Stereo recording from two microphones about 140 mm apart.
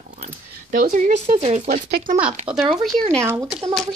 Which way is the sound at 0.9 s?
65° right (ahead or behind).